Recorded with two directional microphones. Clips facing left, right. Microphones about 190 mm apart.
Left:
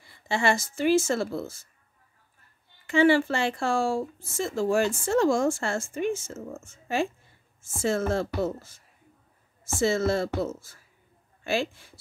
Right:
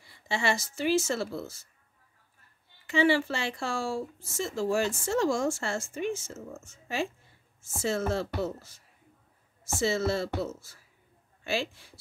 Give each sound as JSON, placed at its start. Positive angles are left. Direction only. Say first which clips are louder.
{"t": 0.0, "sound": "speech", "louder": "left 4 dB", "side_deg": 50}
{"t": 2.9, "sound": "speech", "louder": "left 4 dB", "side_deg": 50}